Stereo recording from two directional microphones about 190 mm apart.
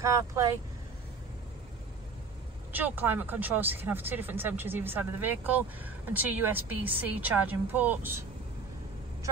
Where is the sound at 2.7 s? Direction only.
10° right (ahead or behind).